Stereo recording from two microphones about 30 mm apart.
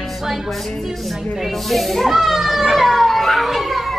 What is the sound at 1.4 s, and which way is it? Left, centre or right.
Speech, centre.